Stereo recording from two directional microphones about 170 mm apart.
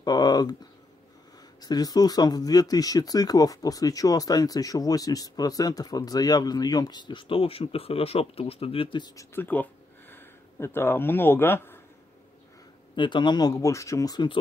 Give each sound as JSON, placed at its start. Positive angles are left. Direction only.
{"t": 0.0, "sound": "speech", "side_deg": 25}
{"t": 1.6, "sound": "speech", "side_deg": 20}
{"t": 12.9, "sound": "speech", "side_deg": 30}